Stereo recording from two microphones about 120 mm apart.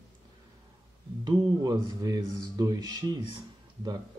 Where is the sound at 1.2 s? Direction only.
35° right (ahead or behind).